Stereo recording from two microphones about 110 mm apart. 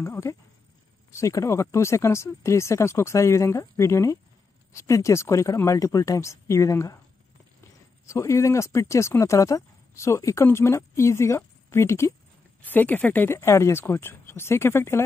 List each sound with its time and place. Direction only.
0.0 s speech: 30° left (ahead or behind)
8.1 s speech: 25° left (ahead or behind)